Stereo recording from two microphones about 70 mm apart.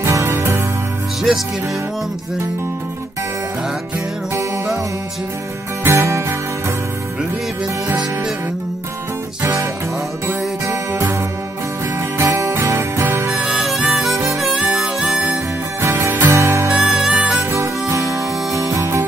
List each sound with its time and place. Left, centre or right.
0.0 s music: right
5.9 s music: right
9.4 s music: right
12.2 s music: right
13.3 s music: centre
13.7 s music: centre
14.3 s harmonica: centre
15.8 s music: right
16.1 s music: right
16.3 s music: right
16.6 s music: centre
17.9 s music: right